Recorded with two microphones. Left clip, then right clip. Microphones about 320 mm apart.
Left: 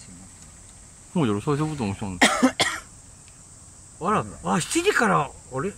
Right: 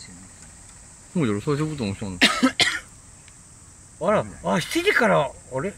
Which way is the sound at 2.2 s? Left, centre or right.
Left.